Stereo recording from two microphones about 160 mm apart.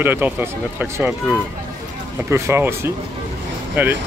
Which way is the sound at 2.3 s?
15° right (ahead or behind).